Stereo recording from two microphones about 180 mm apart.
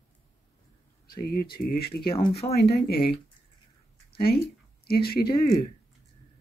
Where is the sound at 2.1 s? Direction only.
30° left (ahead or behind).